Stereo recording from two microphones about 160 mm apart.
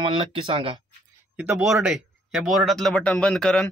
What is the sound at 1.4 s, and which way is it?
Speech, 10° right (ahead or behind).